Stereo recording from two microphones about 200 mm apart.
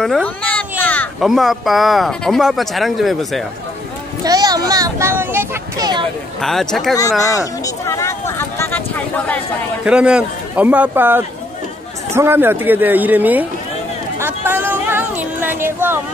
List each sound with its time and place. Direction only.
0.0 s speech: 5° left (ahead or behind)
4.2 s a sound: 20° right (ahead or behind)
6.4 s speech: centre (ahead or behind)
7.0 s speech: 15° left (ahead or behind)
9.8 s speech: 5° right (ahead or behind)
14.2 s a sound: 10° right (ahead or behind)